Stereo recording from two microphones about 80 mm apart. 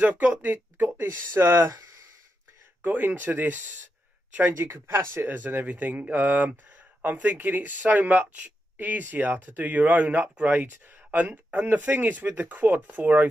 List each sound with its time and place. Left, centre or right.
0.0 s speech: centre
2.8 s speech: right